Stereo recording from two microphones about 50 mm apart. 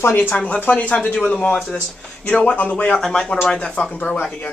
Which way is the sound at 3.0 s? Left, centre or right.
Centre.